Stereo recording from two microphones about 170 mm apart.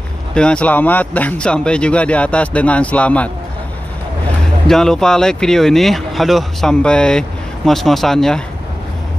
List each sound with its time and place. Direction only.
0.3 s speech: 5° left (ahead or behind)
4.6 s speech: 5° left (ahead or behind)